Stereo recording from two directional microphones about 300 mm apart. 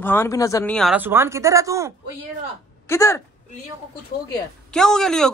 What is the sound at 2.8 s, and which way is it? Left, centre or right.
Speech, centre.